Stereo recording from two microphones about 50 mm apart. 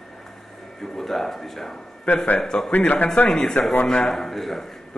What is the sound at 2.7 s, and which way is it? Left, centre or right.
A man's voice, left.